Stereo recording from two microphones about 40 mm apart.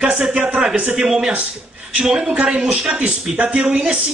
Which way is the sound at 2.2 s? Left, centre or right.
Right.